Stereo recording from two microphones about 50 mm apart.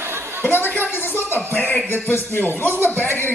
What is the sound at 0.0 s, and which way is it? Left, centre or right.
Chatter, right.